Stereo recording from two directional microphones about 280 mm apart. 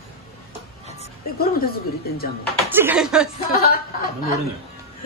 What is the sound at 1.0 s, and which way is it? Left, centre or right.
Speech, left.